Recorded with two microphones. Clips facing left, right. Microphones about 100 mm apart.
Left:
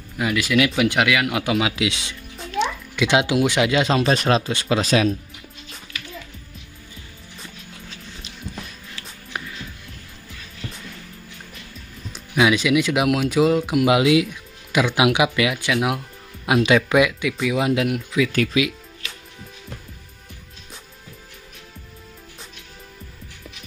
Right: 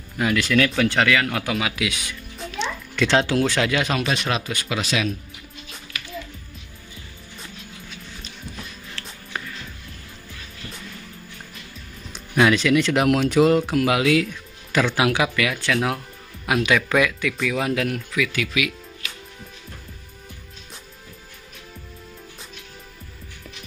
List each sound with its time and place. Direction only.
0.2 s speech: 5° left (ahead or behind); by 2.1 s 25° left (ahead or behind)
2.6 s speech: 10° left (ahead or behind)
4.1 s speech: 35° left (ahead or behind)
9.0 s music: 5° left (ahead or behind)
12.1 s speech: 5° left (ahead or behind)
13.7 s speech: 20° left (ahead or behind)